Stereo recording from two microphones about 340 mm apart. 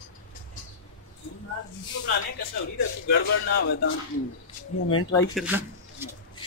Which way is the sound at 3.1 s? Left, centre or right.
Left.